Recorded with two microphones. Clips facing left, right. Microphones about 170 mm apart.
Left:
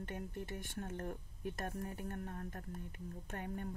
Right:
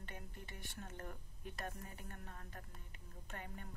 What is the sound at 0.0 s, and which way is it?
A woman's voice, 45° left (ahead or behind).